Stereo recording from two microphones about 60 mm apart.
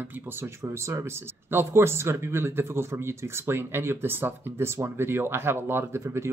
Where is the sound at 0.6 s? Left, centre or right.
Right.